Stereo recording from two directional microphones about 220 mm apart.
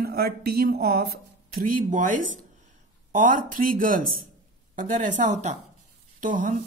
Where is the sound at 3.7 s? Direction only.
40° right (ahead or behind).